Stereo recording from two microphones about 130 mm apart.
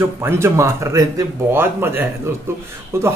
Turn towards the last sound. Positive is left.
turn(degrees=-20)  # may be behind; listen again after turning